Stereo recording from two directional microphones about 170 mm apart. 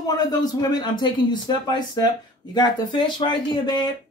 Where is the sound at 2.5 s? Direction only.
25° left (ahead or behind).